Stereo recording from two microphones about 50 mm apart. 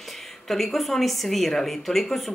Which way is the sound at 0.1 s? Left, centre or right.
Centre.